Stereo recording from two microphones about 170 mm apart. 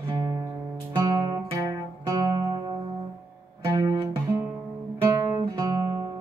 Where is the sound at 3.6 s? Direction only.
20° right (ahead or behind).